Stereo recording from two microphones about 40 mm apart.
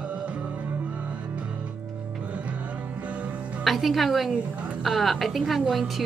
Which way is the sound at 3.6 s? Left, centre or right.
Centre.